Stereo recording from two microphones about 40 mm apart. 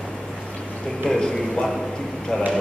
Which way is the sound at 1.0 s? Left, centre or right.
Centre.